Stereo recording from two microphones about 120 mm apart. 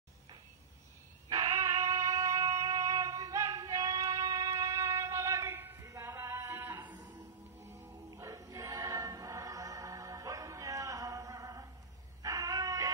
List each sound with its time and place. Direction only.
1.5 s a sound: 25° right (ahead or behind)
6.8 s music: 35° right (ahead or behind)
7.6 s choir: 25° right (ahead or behind)
12.2 s dog: 30° right (ahead or behind)